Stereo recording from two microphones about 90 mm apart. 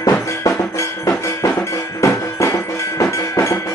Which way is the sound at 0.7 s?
35° left (ahead or behind).